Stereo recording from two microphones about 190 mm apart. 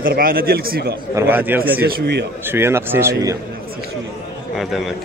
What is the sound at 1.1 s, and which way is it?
Speech, 10° right (ahead or behind).